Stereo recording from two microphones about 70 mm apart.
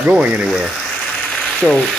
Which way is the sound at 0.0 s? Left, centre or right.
Right.